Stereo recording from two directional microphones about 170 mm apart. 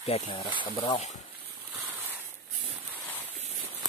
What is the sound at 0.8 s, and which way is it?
Speech, 40° left (ahead or behind).